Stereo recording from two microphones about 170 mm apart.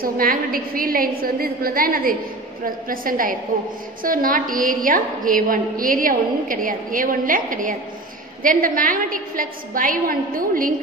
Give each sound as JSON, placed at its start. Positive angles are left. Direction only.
{"t": 0.0, "sound": "a woman's voice", "side_deg": -60}